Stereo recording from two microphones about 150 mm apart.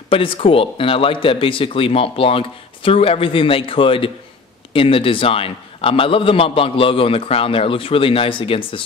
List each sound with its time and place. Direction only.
0.1 s a man's voice: 35° left (ahead or behind)